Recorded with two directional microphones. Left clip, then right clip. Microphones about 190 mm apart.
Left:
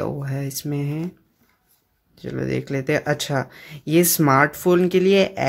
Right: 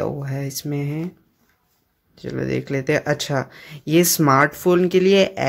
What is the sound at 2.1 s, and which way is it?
Speech, centre (ahead or behind).